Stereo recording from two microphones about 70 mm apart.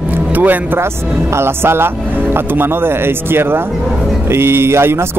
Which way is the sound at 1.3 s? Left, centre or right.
Right.